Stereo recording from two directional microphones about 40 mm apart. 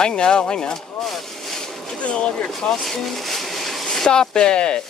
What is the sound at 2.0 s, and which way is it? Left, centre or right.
Speech, left.